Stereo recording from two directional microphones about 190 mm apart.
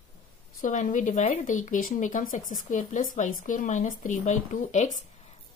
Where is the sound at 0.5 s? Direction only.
45° left (ahead or behind).